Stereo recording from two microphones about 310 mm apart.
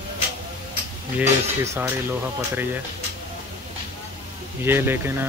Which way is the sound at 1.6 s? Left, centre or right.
Centre.